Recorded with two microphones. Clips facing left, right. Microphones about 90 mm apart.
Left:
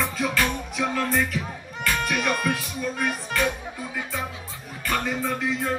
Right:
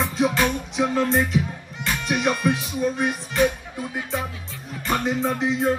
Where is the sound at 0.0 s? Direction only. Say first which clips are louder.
Right 4 dB; 25° right (ahead or behind).